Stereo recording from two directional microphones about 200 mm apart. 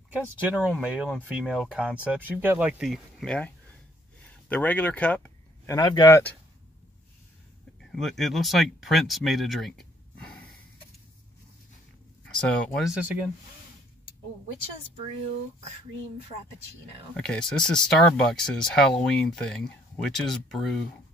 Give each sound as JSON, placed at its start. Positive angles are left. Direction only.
{"t": 0.4, "sound": "speech", "side_deg": -10}
{"t": 5.8, "sound": "speech", "side_deg": 20}
{"t": 7.8, "sound": "speech", "side_deg": 0}
{"t": 12.3, "sound": "speech", "side_deg": 5}
{"t": 17.1, "sound": "speech", "side_deg": 5}